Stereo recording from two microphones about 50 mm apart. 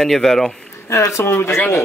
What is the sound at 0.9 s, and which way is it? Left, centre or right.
Speech, left.